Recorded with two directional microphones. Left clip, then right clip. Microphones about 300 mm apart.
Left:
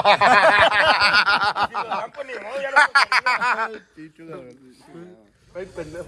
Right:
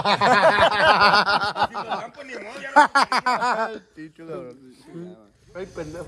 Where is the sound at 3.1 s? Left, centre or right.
Right.